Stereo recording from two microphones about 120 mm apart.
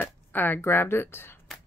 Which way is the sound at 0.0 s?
15° left (ahead or behind).